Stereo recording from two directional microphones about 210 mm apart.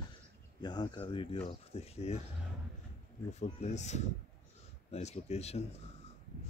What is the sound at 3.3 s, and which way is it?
Speech, 35° left (ahead or behind).